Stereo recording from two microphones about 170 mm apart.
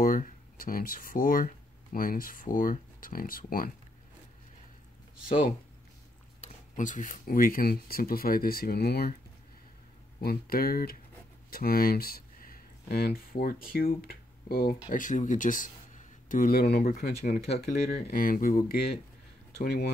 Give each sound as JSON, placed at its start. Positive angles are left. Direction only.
{"t": 0.0, "sound": "speech", "side_deg": 55}
{"t": 6.4, "sound": "speech", "side_deg": 50}
{"t": 10.2, "sound": "speech", "side_deg": 60}
{"t": 17.5, "sound": "speech", "side_deg": 40}
{"t": 17.9, "sound": "speech", "side_deg": 60}